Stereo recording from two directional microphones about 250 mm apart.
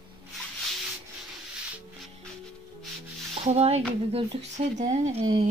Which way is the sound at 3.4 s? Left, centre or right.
Right.